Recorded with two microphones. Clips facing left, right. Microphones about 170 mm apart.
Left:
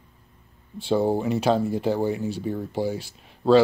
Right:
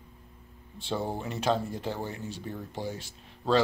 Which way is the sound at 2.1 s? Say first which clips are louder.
Left 11 dB; 10° left (ahead or behind).